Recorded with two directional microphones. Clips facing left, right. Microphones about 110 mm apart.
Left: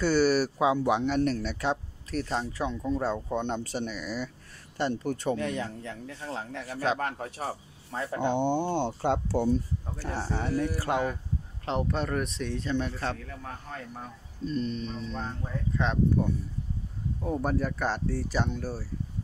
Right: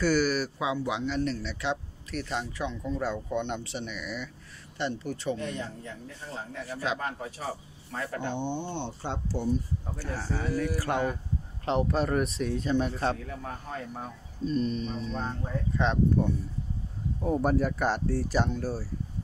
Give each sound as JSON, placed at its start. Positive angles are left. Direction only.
{"t": 0.0, "sound": "speech", "side_deg": 30}
{"t": 5.4, "sound": "speech", "side_deg": 90}
{"t": 7.0, "sound": "speech", "side_deg": 60}
{"t": 7.9, "sound": "speech", "side_deg": 25}
{"t": 8.4, "sound": "speech", "side_deg": 50}
{"t": 10.0, "sound": "speech", "side_deg": 25}
{"t": 11.6, "sound": "speech", "side_deg": 0}
{"t": 13.7, "sound": "speech", "side_deg": -10}